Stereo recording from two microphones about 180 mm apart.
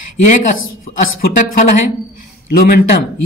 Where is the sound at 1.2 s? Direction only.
45° left (ahead or behind).